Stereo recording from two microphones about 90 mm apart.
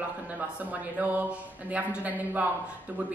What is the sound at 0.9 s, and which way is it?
A woman's voice, 15° right (ahead or behind).